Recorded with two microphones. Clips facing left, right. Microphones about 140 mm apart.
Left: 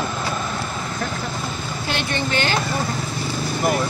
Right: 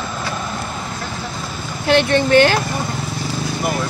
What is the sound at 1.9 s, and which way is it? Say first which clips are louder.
Speech: right 12 dB; 60° right (ahead or behind).